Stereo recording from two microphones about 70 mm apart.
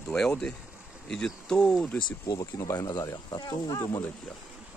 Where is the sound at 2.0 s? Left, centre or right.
Left.